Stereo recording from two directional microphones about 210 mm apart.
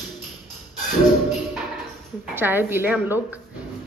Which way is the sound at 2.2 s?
10° right (ahead or behind).